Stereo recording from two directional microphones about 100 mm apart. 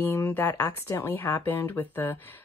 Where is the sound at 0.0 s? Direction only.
25° left (ahead or behind).